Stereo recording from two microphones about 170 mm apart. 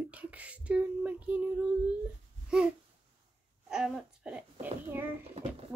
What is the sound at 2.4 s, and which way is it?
Babbling, 5° right (ahead or behind).